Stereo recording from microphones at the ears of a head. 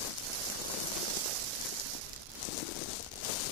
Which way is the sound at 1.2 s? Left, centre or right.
Right.